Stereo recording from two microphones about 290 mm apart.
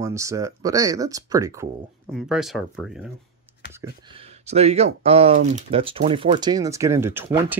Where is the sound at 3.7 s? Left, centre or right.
Centre.